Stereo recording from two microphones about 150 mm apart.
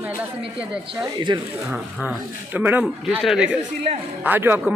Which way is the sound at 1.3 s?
30° right (ahead or behind).